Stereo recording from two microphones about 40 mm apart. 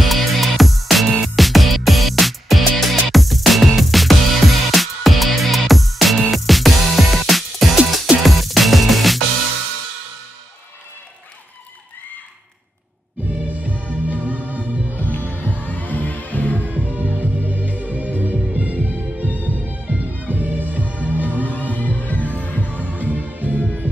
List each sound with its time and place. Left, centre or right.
0.0 s music: centre
13.5 s music: right
15.0 s music: left
16.8 s music: right
21.7 s music: left
22.8 s music: right